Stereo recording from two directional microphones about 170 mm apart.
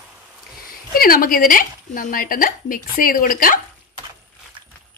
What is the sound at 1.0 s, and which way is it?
A woman's voice, 60° left (ahead or behind).